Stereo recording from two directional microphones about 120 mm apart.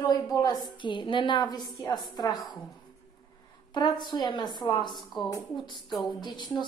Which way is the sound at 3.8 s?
40° left (ahead or behind).